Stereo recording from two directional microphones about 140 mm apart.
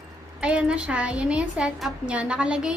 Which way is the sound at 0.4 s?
5° right (ahead or behind).